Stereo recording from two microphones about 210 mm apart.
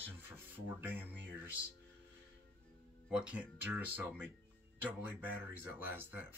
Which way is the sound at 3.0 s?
5° right (ahead or behind).